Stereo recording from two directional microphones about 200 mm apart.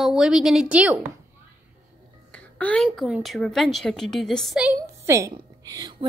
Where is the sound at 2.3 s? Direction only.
5° left (ahead or behind).